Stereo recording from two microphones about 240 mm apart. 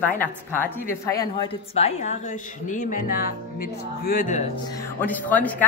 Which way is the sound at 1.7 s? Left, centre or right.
Left.